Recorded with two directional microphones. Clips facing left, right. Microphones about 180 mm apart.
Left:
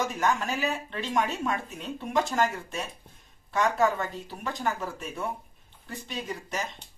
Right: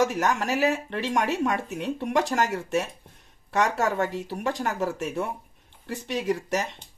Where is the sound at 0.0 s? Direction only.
80° right.